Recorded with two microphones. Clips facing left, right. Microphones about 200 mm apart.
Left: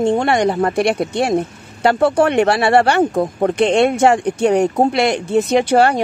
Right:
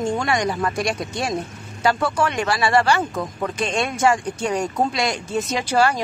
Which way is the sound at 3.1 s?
40° left (ahead or behind).